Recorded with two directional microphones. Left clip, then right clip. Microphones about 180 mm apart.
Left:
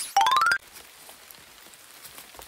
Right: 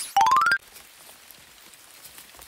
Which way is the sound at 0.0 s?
10° right (ahead or behind).